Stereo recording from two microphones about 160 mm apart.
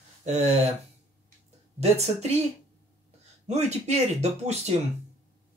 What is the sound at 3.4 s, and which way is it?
Speech, 45° right (ahead or behind).